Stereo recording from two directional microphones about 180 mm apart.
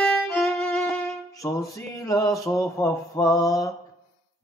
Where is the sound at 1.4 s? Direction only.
15° left (ahead or behind).